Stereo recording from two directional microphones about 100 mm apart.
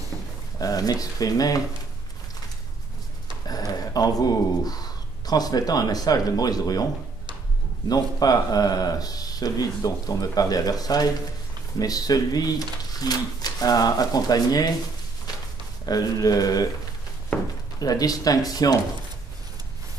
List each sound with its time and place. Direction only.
0.6 s speech: 40° left (ahead or behind)
3.4 s speech: 40° left (ahead or behind)
7.9 s speech: 40° left (ahead or behind)
15.8 s speech: 40° left (ahead or behind)
17.7 s speech: 40° left (ahead or behind)